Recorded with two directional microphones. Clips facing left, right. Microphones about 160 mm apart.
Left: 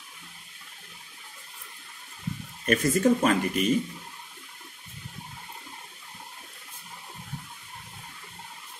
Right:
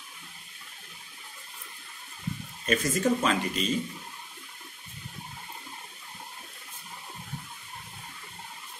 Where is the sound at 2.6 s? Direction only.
50° left (ahead or behind).